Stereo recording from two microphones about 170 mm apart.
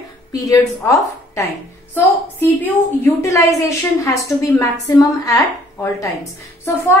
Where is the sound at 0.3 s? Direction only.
20° left (ahead or behind).